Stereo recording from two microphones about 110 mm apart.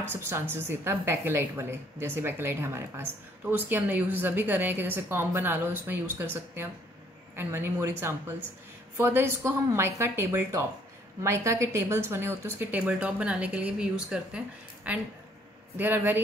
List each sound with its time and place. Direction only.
0.1 s a woman's voice: 20° right (ahead or behind)